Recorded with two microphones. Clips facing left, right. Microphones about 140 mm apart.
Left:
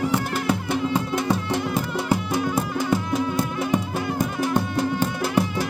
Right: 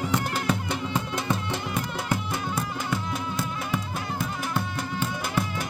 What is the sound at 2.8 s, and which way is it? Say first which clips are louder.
Music: left 7 dB; 40° left (ahead or behind).